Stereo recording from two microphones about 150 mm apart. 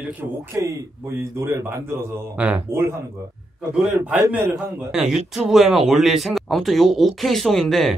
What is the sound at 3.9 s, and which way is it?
Speech, 15° right (ahead or behind).